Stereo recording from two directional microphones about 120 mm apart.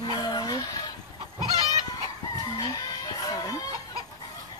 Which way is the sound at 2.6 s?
35° left (ahead or behind).